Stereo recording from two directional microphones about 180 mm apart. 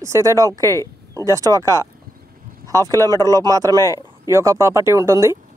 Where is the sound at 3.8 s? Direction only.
20° left (ahead or behind).